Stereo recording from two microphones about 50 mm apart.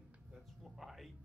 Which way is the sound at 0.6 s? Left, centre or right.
Centre.